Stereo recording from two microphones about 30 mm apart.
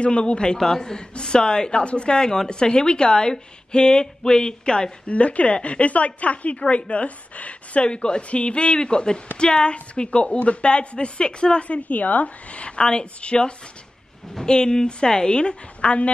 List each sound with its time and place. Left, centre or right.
0.0 s a woman's voice: left
0.6 s a woman's voice: centre
5.1 s a woman's voice: left
7.9 s a woman's voice: left
8.2 s a woman's voice: left
11.6 s speech: left
12.4 s a woman's voice: left